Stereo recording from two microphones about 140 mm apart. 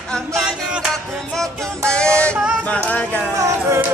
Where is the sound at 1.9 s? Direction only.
5° left (ahead or behind).